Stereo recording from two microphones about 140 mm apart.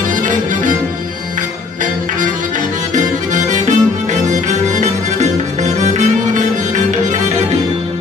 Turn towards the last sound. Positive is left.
turn(degrees=-60)  # may be behind; listen again after turning